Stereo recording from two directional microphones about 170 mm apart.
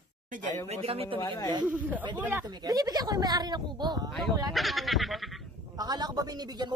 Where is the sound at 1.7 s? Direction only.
10° right (ahead or behind).